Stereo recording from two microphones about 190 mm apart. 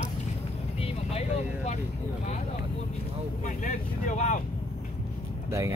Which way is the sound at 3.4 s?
40° left (ahead or behind).